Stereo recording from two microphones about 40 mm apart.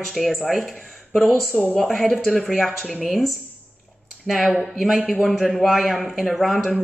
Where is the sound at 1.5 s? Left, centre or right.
Left.